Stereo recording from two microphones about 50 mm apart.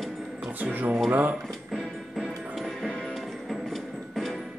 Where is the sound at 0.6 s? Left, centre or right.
Right.